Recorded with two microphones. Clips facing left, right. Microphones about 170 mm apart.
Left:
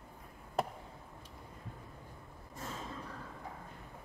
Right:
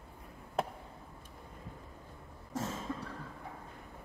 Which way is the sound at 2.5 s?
90° right.